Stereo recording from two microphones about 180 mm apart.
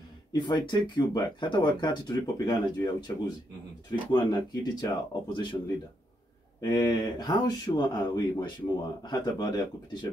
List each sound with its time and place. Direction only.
0.3 s speech: 25° left (ahead or behind)
4.1 s speech: 25° left (ahead or behind)
6.6 s speech: 20° left (ahead or behind)